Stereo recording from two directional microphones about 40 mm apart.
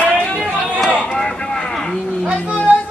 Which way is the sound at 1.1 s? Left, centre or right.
Centre.